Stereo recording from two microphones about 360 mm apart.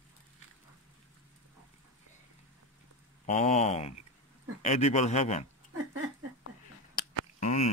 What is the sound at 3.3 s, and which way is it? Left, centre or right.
A man's voice, centre.